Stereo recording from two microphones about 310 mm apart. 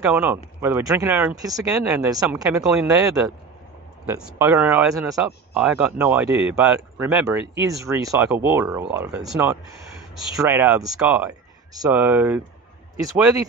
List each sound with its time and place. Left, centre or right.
0.1 s speech: centre